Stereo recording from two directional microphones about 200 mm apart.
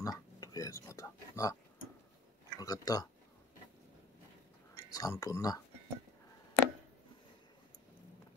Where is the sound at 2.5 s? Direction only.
20° left (ahead or behind).